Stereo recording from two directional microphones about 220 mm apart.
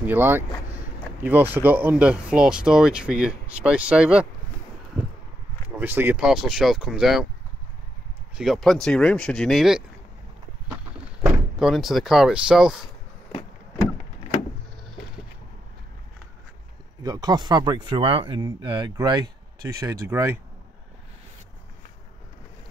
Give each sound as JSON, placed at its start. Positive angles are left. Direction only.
{"t": 0.0, "sound": "speech", "side_deg": -10}
{"t": 5.8, "sound": "speech", "side_deg": -10}
{"t": 8.4, "sound": "speech", "side_deg": 0}
{"t": 11.1, "sound": "speech", "side_deg": -5}
{"t": 17.0, "sound": "a man's voice", "side_deg": -15}